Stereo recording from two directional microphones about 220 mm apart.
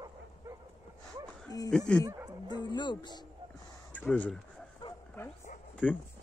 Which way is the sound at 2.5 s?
20° left (ahead or behind).